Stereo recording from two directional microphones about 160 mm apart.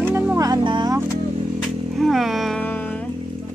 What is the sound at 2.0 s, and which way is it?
Music, centre (ahead or behind).